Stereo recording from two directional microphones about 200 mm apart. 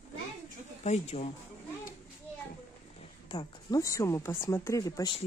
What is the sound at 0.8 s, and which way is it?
Speech, 35° left (ahead or behind).